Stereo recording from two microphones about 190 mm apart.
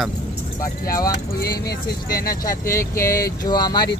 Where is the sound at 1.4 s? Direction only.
55° left (ahead or behind).